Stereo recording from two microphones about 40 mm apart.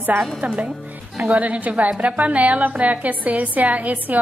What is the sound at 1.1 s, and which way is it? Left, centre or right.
A woman's voice, right.